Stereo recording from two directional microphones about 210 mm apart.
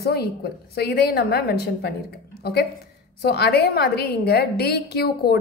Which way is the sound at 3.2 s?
50° left (ahead or behind).